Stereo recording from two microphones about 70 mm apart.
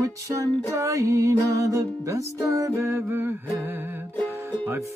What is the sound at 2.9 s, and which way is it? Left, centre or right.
Speech, right.